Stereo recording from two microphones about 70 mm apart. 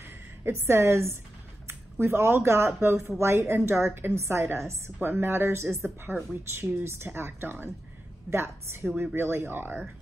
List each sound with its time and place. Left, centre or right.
0.4 s a woman's voice: right